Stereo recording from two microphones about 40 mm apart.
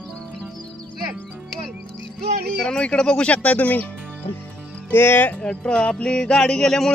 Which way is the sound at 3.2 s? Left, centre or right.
Left.